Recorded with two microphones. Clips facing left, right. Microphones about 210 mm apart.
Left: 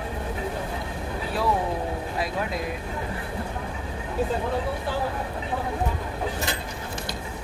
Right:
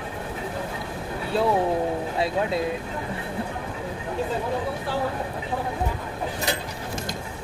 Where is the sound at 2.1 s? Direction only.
25° right (ahead or behind).